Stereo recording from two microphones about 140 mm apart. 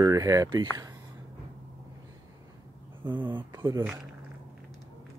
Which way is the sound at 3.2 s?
30° right (ahead or behind).